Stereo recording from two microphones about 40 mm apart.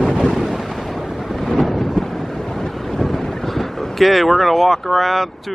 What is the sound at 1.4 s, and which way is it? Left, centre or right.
Vehicle, centre.